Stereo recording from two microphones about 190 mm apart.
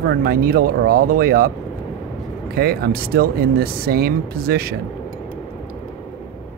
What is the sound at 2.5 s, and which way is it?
Speech, 55° right (ahead or behind).